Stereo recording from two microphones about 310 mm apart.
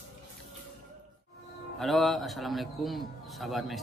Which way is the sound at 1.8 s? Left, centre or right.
Centre.